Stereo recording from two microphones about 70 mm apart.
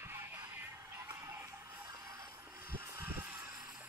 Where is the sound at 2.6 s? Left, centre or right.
Right.